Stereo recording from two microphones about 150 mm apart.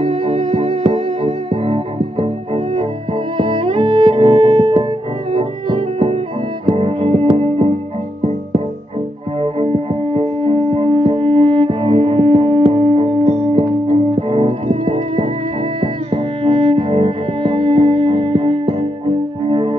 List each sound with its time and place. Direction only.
0.0 s music: 35° right (ahead or behind)
10.1 s music: 35° right (ahead or behind)